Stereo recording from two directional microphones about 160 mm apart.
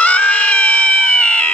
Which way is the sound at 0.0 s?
10° left (ahead or behind).